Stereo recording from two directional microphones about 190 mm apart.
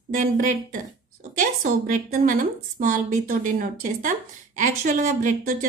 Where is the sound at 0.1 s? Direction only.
45° right (ahead or behind).